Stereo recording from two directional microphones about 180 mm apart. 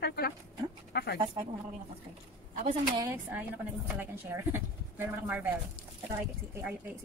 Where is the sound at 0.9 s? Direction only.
65° left (ahead or behind).